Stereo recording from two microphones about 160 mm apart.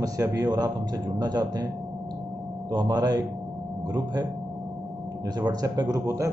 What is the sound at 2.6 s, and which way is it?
Speech, 25° right (ahead or behind).